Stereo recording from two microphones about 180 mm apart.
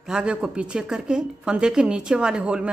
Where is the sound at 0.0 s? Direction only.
5° right (ahead or behind).